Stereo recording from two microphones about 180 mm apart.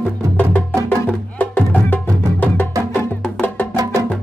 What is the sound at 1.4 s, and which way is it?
Music, 10° left (ahead or behind).